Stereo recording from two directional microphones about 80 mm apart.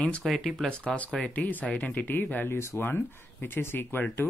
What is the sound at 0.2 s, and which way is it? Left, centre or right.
Speech, centre.